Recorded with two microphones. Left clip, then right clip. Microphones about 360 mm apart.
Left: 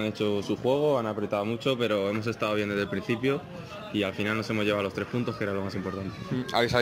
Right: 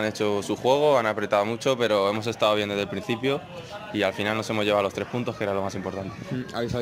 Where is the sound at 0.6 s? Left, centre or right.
Right.